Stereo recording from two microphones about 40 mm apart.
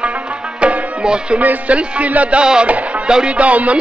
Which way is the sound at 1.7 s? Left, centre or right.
Right.